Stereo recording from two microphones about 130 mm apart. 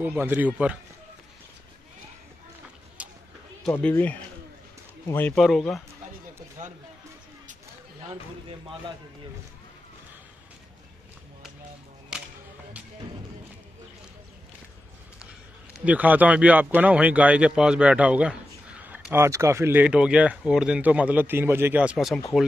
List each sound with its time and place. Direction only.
0.0 s speech: 15° right (ahead or behind)
3.0 s a sound: 10° right (ahead or behind)
3.9 s speech: 15° left (ahead or behind)
5.3 s speech: centre (ahead or behind)
8.1 s speech: 45° right (ahead or behind)
12.1 s whip: 5° right (ahead or behind)
15.8 s speech: 10° right (ahead or behind)
21.9 s speech: centre (ahead or behind)